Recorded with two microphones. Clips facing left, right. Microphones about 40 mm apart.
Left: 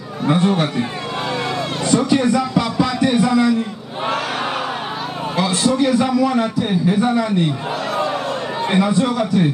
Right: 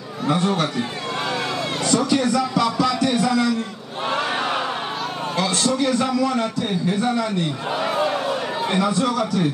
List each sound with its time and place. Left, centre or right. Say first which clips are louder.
0.3 s speech: left 4 dB; left
1.9 s speech: left 4 dB; left
4.2 s crowd: even; centre
5.3 s a man's voice: left 4 dB; centre
7.7 s speech: even; centre
8.6 s speech: left 4 dB; left